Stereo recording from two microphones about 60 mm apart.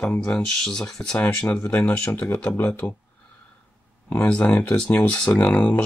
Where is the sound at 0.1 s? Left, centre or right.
Left.